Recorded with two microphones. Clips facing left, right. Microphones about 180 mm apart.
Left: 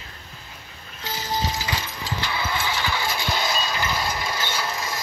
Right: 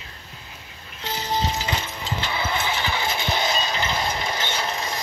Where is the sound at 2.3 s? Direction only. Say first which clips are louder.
Right 2 dB; 20° right (ahead or behind).